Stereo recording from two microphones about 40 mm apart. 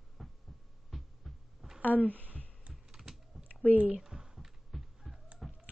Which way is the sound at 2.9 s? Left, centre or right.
Centre.